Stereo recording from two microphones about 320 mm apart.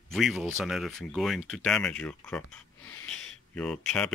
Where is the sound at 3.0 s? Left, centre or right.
Centre.